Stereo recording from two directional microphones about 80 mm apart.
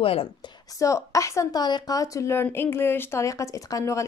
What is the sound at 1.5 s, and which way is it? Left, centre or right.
Speech, left.